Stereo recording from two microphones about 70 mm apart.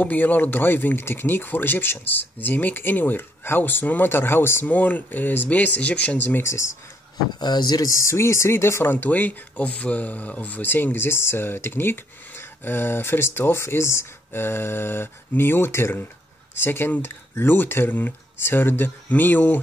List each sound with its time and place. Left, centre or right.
0.0 s speech: left
4.6 s speech: left
6.4 s speech: left
7.3 s speech: left